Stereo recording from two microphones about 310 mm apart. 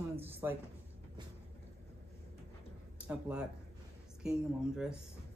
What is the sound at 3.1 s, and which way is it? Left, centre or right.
Speech, centre.